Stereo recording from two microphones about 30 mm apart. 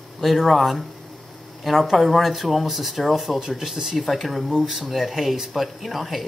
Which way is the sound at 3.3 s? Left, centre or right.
Centre.